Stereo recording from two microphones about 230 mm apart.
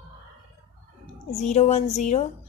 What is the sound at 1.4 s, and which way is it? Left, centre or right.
Speech, left.